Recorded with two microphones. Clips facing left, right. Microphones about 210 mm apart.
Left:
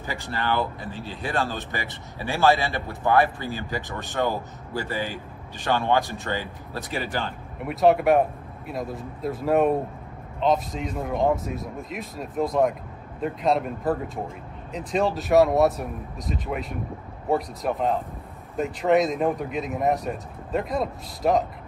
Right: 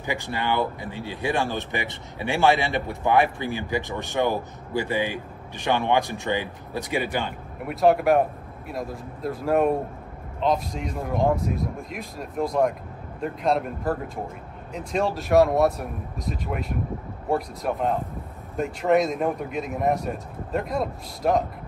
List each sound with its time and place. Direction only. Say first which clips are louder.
0.0 s speech: right 2 dB; 15° right (ahead or behind)
7.6 s speech: even; centre (ahead or behind)